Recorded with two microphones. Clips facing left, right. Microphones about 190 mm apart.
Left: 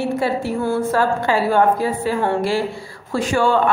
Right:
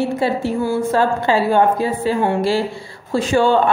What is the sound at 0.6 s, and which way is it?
Speech, 10° right (ahead or behind).